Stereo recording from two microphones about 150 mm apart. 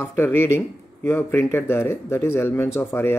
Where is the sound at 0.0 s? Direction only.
15° left (ahead or behind).